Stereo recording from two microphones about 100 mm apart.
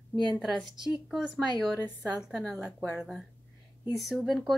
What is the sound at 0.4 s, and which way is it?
Speech, centre (ahead or behind).